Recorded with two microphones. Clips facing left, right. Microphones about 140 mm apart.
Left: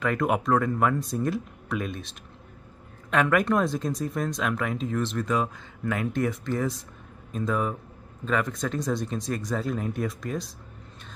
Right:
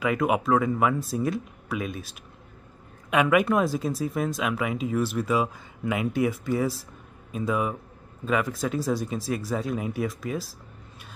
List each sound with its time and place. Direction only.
0.0 s speech: 5° right (ahead or behind)